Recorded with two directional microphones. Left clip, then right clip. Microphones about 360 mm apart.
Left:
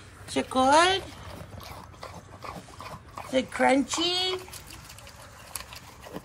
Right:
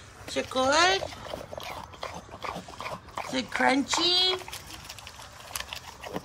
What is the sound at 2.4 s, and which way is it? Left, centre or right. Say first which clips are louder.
Dog: right 5 dB; centre.